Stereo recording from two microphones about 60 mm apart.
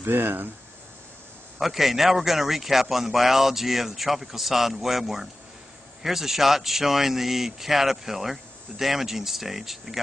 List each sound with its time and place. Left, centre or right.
0.0 s speech: right
1.6 s a man's voice: centre